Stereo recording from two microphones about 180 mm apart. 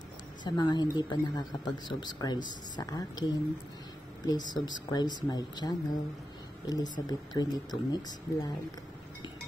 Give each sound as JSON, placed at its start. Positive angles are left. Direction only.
{"t": 0.4, "sound": "speech", "side_deg": 25}